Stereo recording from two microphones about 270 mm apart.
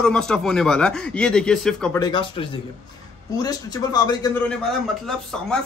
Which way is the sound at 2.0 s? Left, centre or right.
Centre.